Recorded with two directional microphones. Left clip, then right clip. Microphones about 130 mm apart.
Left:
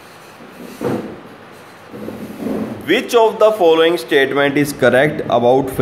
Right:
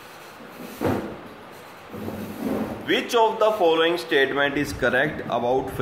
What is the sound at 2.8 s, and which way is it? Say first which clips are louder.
Speech: left 7 dB; 45° left (ahead or behind).